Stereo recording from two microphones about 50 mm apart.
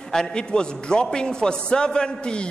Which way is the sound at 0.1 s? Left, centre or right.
Centre.